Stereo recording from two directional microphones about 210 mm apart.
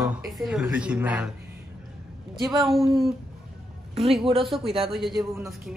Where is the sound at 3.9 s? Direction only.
25° right (ahead or behind).